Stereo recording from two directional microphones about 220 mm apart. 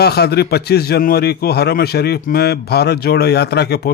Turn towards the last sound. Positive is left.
turn(degrees=45)  # may be behind; listen again after turning